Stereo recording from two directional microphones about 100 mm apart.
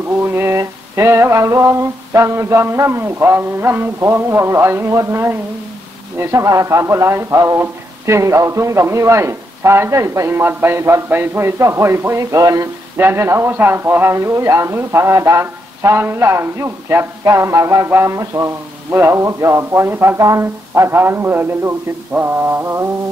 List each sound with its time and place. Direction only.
0.2 s a man's voice: 25° right (ahead or behind)
12.9 s a man's voice: 25° right (ahead or behind)